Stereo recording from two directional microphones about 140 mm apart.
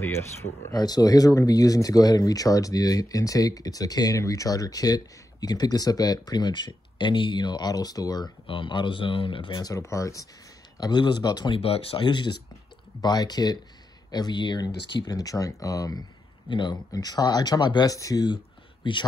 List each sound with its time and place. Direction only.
0.0 s speech: 20° left (ahead or behind); by 19.0 s 35° left (ahead or behind)